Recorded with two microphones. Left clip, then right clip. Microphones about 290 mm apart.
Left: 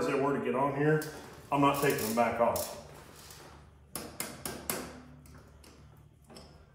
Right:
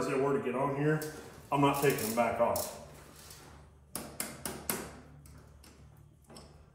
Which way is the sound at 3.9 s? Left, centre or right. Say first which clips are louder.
Left 1 dB; centre.